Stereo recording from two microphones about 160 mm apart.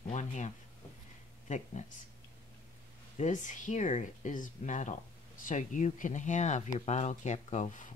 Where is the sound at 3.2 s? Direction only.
50° left (ahead or behind).